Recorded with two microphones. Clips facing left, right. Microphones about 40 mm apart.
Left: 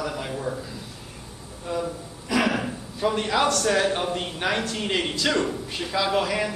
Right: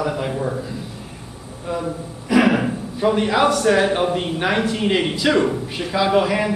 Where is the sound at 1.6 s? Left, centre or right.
Centre.